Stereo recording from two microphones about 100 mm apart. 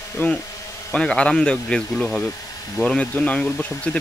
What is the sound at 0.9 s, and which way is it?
Speech, 10° left (ahead or behind).